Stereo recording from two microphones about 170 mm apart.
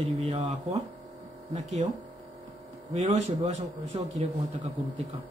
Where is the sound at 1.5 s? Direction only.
40° right (ahead or behind).